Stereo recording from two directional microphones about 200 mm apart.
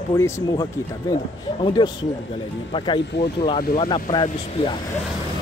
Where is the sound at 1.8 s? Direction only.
20° left (ahead or behind).